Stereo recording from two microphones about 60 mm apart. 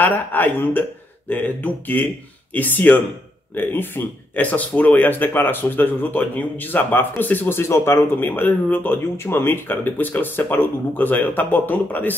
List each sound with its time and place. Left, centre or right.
0.0 s speech: left